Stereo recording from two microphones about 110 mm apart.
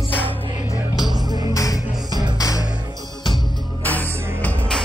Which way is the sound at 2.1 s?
35° right (ahead or behind).